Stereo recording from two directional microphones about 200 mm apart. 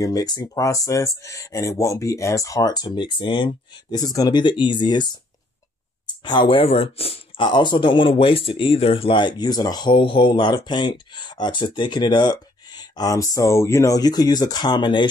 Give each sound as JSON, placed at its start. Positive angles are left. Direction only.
{"t": 0.0, "sound": "speech", "side_deg": 20}
{"t": 6.2, "sound": "speech", "side_deg": 20}